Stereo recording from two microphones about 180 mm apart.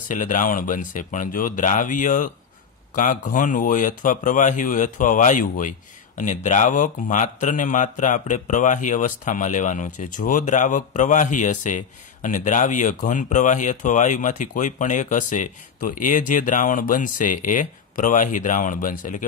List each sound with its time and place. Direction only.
0.1 s speech: 45° left (ahead or behind)